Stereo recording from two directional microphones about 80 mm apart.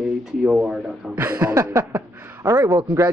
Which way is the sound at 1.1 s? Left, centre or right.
Right.